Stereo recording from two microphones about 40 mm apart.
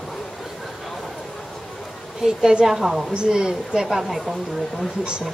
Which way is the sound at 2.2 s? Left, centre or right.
Centre.